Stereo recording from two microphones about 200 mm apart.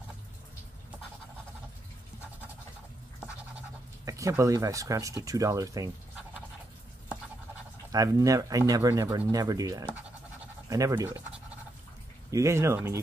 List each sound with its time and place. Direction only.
4.0 s speech: 15° right (ahead or behind)
7.9 s speech: 15° right (ahead or behind)